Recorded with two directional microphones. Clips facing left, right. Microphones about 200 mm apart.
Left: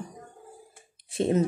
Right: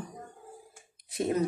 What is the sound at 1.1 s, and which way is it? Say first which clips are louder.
Speech: left 4 dB; 30° left (ahead or behind).